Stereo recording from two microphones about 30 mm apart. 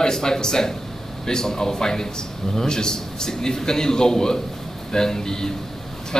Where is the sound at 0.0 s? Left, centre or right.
Left.